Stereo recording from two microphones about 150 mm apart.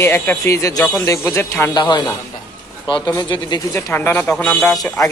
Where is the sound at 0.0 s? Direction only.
15° left (ahead or behind).